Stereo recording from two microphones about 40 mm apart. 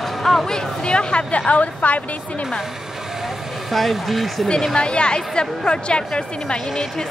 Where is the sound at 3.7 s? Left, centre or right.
Centre.